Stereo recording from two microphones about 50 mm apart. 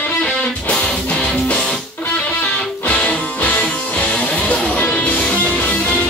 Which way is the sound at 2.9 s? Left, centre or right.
Centre.